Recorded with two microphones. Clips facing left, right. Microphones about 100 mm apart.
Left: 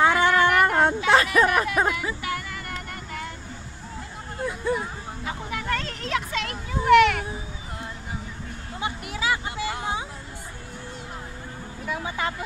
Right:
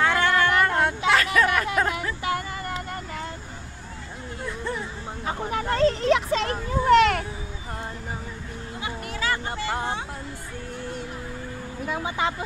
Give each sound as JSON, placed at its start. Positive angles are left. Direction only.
{"t": 0.0, "sound": "a sound", "side_deg": 20}
{"t": 1.8, "sound": "speech", "side_deg": 20}
{"t": 2.2, "sound": "child singing", "side_deg": -30}
{"t": 4.7, "sound": "speech", "side_deg": 10}
{"t": 5.2, "sound": "speech", "side_deg": -35}
{"t": 8.8, "sound": "a sound", "side_deg": 15}
{"t": 11.9, "sound": "speech", "side_deg": -20}